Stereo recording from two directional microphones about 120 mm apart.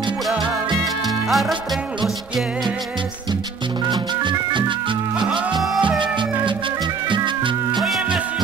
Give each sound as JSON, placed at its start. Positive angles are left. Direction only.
{"t": 1.0, "sound": "music", "side_deg": 0}
{"t": 3.9, "sound": "music", "side_deg": -40}
{"t": 7.1, "sound": "music", "side_deg": -40}
{"t": 7.8, "sound": "music", "side_deg": 0}